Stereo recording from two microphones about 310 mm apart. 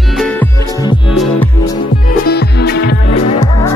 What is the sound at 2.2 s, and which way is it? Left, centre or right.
Music, left.